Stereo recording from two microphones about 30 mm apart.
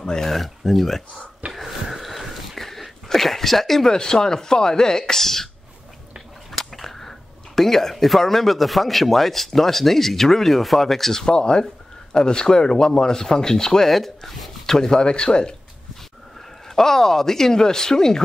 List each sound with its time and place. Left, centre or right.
0.0 s speech: left
0.3 s speech: centre
1.5 s a sound: centre
3.9 s speech: left
6.6 s speech: centre
11.1 s speech: left
13.8 s speech: centre
14.8 s speech: left
16.6 s speech: centre